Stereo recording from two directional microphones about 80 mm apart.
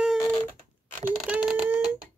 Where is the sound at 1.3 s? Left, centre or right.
Centre.